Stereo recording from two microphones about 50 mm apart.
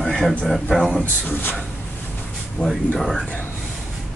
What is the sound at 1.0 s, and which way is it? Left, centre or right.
Speech, left.